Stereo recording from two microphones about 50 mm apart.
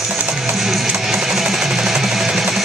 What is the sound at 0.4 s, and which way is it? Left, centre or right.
Music, centre.